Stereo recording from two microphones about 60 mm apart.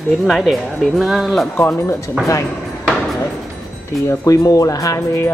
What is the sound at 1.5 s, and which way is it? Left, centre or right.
Music, left.